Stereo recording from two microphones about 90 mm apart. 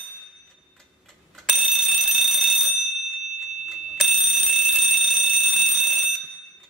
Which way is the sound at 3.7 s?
Centre (ahead or behind).